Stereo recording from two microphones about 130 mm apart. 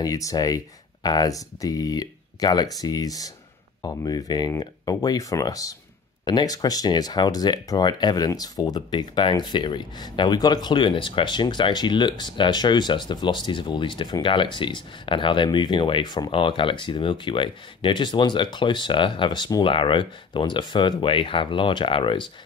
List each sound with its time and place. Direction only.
0.0 s speech: 25° left (ahead or behind)